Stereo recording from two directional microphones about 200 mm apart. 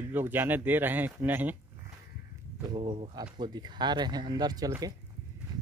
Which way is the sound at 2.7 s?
30° right (ahead or behind).